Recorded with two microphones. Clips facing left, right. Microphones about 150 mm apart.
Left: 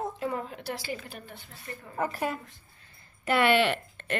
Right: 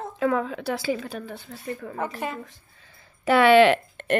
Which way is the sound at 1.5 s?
90° right.